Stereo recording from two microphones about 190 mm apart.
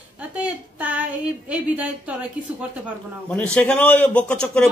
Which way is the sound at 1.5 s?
5° right (ahead or behind).